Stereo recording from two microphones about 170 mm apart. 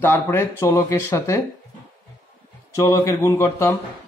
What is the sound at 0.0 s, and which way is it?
Speech, 15° left (ahead or behind).